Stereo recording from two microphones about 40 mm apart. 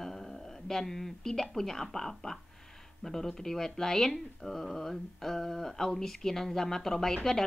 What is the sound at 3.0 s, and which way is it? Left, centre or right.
A woman's voice, centre.